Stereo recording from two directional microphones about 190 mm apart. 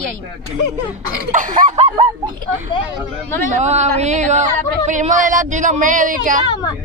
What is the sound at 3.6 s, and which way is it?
Speech, 35° right (ahead or behind).